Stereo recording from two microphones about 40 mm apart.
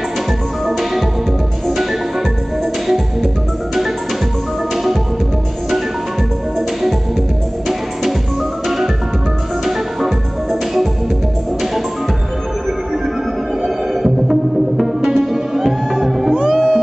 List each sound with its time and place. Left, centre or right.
0.7 s music: centre
8.6 s organ: centre
9.7 s music: centre
14.0 s music: centre